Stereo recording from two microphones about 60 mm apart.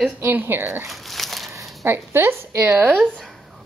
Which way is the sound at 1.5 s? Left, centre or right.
Right.